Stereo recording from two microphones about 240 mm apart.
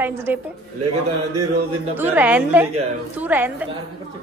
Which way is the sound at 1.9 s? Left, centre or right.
Centre.